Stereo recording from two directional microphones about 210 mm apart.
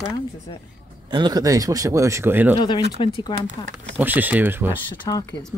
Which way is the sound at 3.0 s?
25° left (ahead or behind).